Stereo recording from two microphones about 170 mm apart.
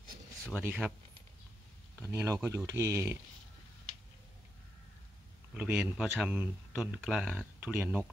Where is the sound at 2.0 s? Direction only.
15° right (ahead or behind).